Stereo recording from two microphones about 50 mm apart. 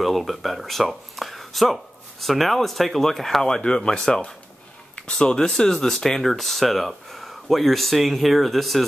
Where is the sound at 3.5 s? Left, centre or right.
Centre.